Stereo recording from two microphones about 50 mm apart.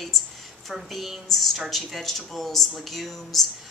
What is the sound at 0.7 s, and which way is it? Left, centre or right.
A woman's voice, centre.